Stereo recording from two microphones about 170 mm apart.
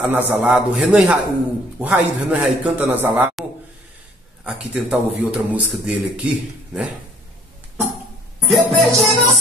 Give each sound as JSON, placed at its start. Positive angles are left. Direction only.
{"t": 0.0, "sound": "a man's voice", "side_deg": -10}
{"t": 4.5, "sound": "a man's voice", "side_deg": -5}
{"t": 8.5, "sound": "a man's voice", "side_deg": 0}